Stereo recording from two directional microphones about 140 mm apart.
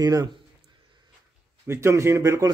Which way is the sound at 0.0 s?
30° right (ahead or behind).